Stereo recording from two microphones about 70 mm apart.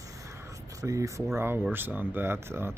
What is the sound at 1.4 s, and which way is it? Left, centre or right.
Speech, right.